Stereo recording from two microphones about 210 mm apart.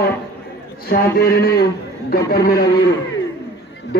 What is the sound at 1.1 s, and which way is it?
A man's voice, 45° left (ahead or behind).